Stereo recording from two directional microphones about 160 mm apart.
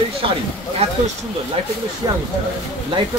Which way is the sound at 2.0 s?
25° right (ahead or behind).